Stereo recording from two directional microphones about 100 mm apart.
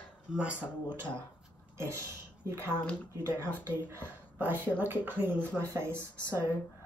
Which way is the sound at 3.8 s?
20° right (ahead or behind).